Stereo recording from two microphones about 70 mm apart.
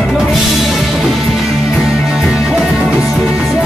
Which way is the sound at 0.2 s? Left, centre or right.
Centre.